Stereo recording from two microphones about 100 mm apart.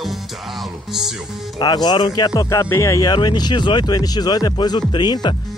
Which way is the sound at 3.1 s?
45° left (ahead or behind).